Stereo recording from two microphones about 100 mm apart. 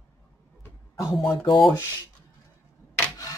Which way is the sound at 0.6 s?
30° left (ahead or behind).